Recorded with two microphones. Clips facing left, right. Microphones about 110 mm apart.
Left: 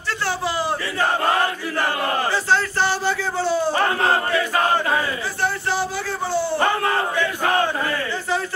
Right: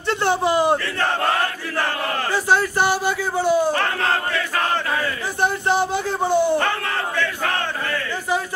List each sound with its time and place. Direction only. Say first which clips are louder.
0.2 s a man's voice: right 6 dB; 20° right (ahead or behind)
0.9 s battle cry: left 1 dB; 10° left (ahead or behind)
2.3 s a sound: right 2 dB; 15° right (ahead or behind)
3.7 s battle cry: left 2 dB; 15° left (ahead or behind)
5.4 s a sound: right 4 dB; 20° right (ahead or behind)
6.6 s battle cry: left 3 dB; 20° left (ahead or behind)